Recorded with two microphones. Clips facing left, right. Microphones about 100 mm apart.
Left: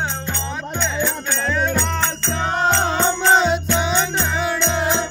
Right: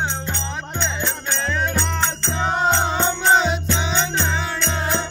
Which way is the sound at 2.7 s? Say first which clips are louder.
Left 2 dB; 5° right (ahead or behind).